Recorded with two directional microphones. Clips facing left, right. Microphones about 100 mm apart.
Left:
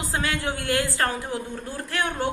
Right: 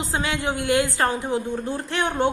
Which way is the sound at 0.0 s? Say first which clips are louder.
Right 2 dB; 20° right (ahead or behind).